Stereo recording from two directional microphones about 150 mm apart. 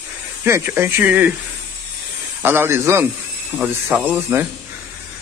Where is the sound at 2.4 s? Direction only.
15° right (ahead or behind).